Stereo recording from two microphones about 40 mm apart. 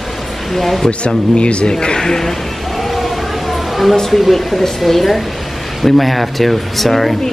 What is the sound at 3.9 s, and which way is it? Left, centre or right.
Speech, centre.